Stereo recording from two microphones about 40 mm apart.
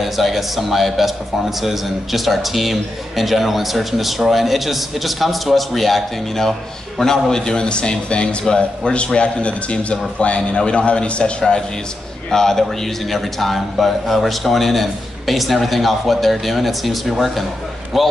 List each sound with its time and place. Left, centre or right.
0.0 s a man's voice: centre; by 11.4 s left
12.3 s speech: centre